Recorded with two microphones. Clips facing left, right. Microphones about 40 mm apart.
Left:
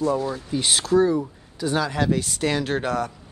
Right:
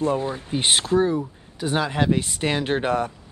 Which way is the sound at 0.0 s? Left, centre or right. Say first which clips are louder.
Even; right.